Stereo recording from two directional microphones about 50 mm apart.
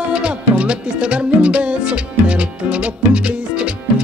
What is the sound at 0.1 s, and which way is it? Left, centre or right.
Music, right.